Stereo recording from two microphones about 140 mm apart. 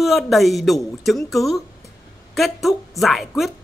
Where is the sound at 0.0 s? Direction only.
Centre (ahead or behind).